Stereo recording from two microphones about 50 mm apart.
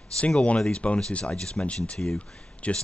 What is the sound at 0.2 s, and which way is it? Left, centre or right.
Speech, left.